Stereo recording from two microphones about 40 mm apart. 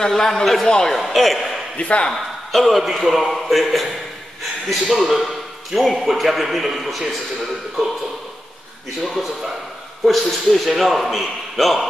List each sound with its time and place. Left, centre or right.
0.0 s a man's voice: centre
0.7 s speech: centre
0.9 s a man's voice: centre
1.8 s speech: left
2.5 s a man's voice: centre
9.0 s a man's voice: centre